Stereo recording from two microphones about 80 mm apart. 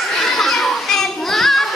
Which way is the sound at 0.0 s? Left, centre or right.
Centre.